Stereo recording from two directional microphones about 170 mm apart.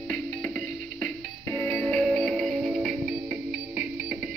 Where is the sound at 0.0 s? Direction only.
5° left (ahead or behind).